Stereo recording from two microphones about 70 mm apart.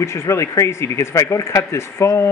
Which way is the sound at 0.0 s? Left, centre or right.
Left.